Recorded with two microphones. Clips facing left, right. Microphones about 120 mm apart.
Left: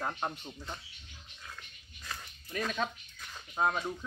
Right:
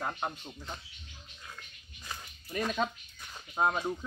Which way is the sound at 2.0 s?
20° right (ahead or behind).